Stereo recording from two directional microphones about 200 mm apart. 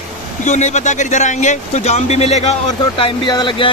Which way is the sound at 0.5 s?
35° left (ahead or behind).